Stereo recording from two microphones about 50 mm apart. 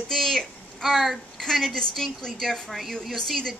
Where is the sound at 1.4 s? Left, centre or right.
Centre.